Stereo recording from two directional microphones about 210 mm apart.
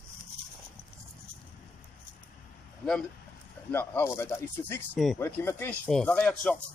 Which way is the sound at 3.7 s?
10° left (ahead or behind).